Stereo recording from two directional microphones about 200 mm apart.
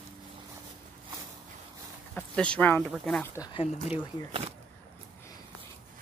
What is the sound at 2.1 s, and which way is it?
Speech, 5° left (ahead or behind).